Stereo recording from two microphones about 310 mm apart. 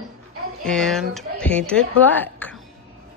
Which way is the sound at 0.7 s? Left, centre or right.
Centre.